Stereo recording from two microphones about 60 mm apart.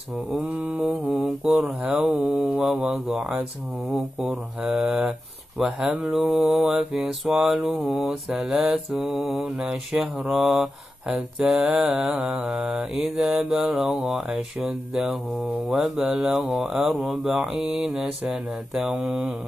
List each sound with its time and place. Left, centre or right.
0.7 s mantra: right
1.2 s mantra: centre
2.6 s mantra: centre
4.6 s mantra: centre
5.6 s speech: centre
6.5 s mantra: centre
7.7 s a sound: right
8.1 s mantra: centre
15.7 s mantra: centre
16.7 s speech: centre
17.3 s mantra: centre